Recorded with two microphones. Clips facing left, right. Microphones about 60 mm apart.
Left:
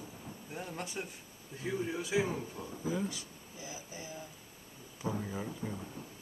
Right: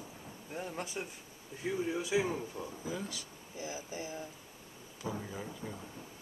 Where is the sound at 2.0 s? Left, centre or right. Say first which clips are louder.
Even; centre.